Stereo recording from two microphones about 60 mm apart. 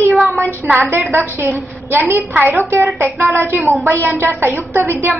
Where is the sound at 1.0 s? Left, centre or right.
Right.